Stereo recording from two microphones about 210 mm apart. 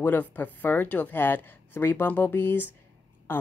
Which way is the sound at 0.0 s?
10° left (ahead or behind).